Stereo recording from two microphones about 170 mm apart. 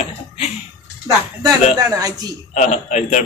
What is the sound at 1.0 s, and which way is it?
Speech, 20° right (ahead or behind).